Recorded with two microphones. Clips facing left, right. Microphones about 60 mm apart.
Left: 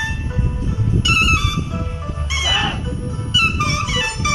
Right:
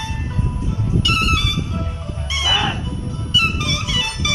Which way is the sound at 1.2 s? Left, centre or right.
Left.